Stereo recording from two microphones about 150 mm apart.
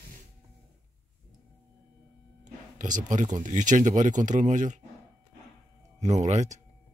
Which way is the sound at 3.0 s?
60° right (ahead or behind).